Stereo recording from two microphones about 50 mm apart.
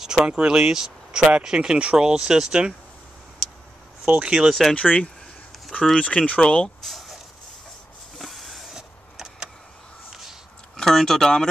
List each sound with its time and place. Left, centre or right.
0.0 s a sound: centre
0.3 s speech: centre
4.1 s speech: centre
4.5 s speech: centre
4.7 s speech: left
6.8 s a sound: centre
8.2 s a sound: centre
8.7 s vehicle: centre
10.8 s speech: centre